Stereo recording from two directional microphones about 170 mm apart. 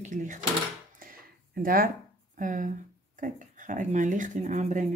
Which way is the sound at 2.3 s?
50° right (ahead or behind).